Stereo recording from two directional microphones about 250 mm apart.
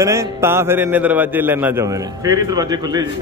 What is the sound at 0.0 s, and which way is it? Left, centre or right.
A man's voice, centre.